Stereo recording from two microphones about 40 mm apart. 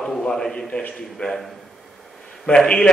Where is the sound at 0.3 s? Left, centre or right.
Left.